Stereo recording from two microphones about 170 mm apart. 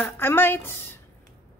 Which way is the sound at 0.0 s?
15° left (ahead or behind).